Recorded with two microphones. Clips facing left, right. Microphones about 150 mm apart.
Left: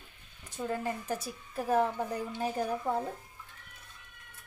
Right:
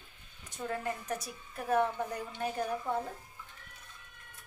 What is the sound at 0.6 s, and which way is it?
A woman's voice, 30° left (ahead or behind).